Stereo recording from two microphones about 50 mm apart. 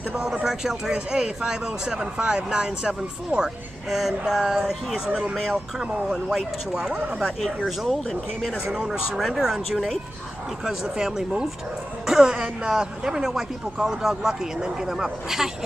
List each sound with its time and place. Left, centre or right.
0.1 s speech: centre
7.4 s speech: centre
8.6 s speech: centre